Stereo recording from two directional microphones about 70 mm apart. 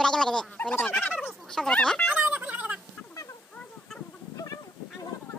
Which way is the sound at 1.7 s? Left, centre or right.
Centre.